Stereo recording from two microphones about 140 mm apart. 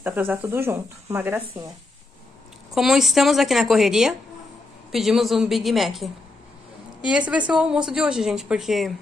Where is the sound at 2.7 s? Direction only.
5° right (ahead or behind).